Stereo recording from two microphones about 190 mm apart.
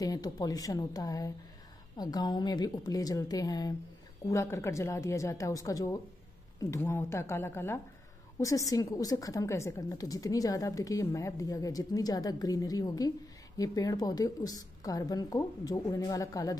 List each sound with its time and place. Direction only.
0.0 s a woman's voice: 20° left (ahead or behind)